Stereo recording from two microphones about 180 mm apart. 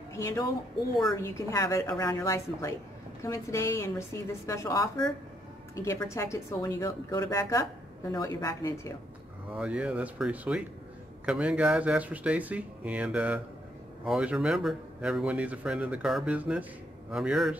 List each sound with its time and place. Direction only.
0.1 s a woman's voice: 15° left (ahead or behind)
9.5 s a man's voice: 5° right (ahead or behind)